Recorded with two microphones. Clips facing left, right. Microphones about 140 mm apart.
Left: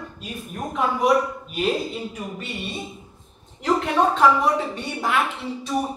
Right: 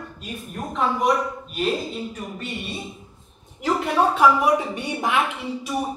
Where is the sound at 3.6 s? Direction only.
10° right (ahead or behind).